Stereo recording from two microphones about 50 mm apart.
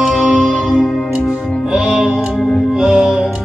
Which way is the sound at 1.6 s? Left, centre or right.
Centre.